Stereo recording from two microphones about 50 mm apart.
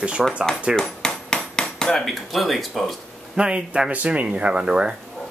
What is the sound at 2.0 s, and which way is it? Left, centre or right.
Speech, centre.